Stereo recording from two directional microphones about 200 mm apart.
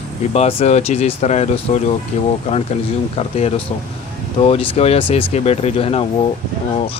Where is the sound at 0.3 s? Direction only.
30° left (ahead or behind).